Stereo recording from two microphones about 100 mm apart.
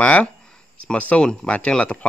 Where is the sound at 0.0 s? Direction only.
15° left (ahead or behind).